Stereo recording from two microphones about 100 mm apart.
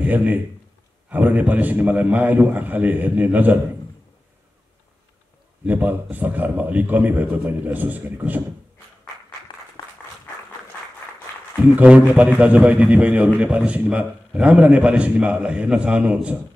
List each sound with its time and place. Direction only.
0.0 s a man's voice: 15° right (ahead or behind)
5.7 s a man's voice: 15° right (ahead or behind)
9.5 s applause: 50° left (ahead or behind)
11.7 s a man's voice: 15° right (ahead or behind)